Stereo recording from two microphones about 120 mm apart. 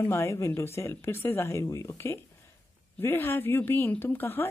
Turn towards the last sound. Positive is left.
turn(degrees=15)  # may be behind; listen again after turning